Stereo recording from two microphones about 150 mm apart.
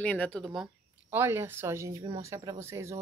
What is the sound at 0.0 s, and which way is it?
Speech, 5° left (ahead or behind).